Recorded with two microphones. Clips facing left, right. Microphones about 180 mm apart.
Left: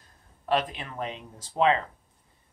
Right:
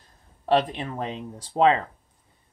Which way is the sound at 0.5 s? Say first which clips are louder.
Right 5 dB; 30° right (ahead or behind).